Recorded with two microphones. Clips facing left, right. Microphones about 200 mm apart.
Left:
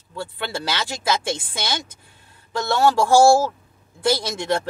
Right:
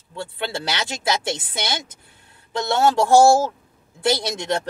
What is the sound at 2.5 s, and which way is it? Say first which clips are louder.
Speech: even; 20° right (ahead or behind).